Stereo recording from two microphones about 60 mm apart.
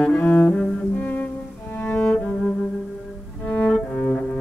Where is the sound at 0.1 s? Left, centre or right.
Left.